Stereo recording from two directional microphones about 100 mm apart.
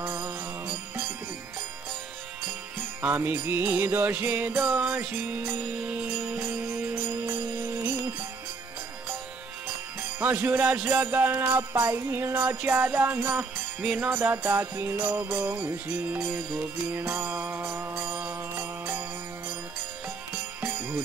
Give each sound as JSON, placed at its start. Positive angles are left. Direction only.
{"t": 0.0, "sound": "music", "side_deg": -25}
{"t": 3.0, "sound": "music", "side_deg": -20}
{"t": 5.9, "sound": "music", "side_deg": -10}
{"t": 10.2, "sound": "music", "side_deg": -20}
{"t": 11.4, "sound": "music", "side_deg": -35}
{"t": 13.7, "sound": "music", "side_deg": -10}
{"t": 14.1, "sound": "music", "side_deg": -25}